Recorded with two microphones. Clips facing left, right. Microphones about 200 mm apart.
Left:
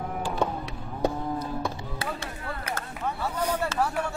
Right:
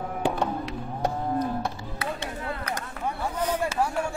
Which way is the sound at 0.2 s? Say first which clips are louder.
Right 10 dB; 65° right (ahead or behind).